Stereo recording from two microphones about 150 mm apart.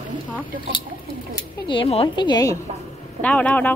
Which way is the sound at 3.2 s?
10° left (ahead or behind).